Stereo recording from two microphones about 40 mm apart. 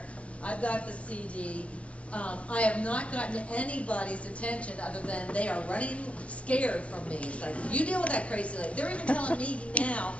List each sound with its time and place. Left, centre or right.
0.5 s a woman's voice: left